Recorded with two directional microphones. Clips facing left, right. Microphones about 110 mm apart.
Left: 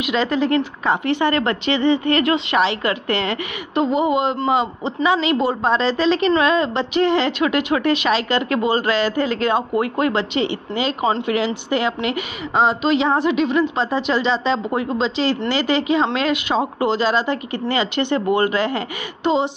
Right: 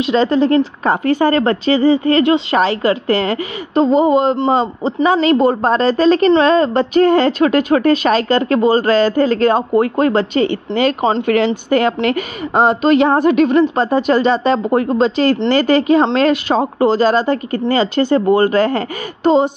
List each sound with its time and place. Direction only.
0.0 s a woman's voice: 35° right (ahead or behind)